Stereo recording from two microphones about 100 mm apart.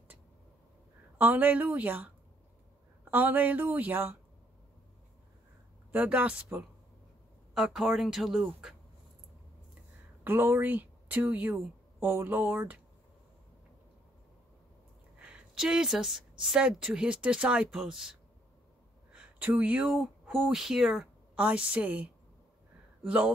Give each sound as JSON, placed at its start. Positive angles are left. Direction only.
{"t": 1.1, "sound": "a woman's voice", "side_deg": -15}
{"t": 3.1, "sound": "speech", "side_deg": -20}
{"t": 5.9, "sound": "a woman's voice", "side_deg": -15}
{"t": 7.5, "sound": "speech", "side_deg": -5}
{"t": 10.2, "sound": "a woman's voice", "side_deg": -20}
{"t": 15.1, "sound": "a woman's voice", "side_deg": -10}
{"t": 19.1, "sound": "a sound", "side_deg": -15}
{"t": 20.3, "sound": "a woman's voice", "side_deg": -5}